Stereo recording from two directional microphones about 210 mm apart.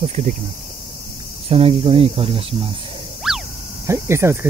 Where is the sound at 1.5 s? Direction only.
25° right (ahead or behind).